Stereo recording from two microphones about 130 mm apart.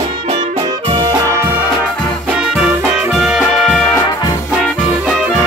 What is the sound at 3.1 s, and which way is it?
Brass instrument, 5° right (ahead or behind).